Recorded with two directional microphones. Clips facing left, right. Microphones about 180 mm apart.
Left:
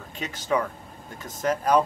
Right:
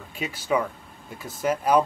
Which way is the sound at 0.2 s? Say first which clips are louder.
Right 1 dB; 10° right (ahead or behind).